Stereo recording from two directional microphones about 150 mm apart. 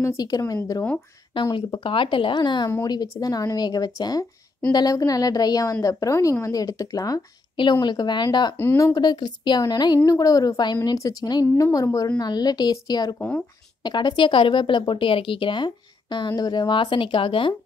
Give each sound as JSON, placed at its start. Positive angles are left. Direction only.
{"t": 0.0, "sound": "a woman's voice", "side_deg": 20}
{"t": 8.5, "sound": "a woman's voice", "side_deg": 15}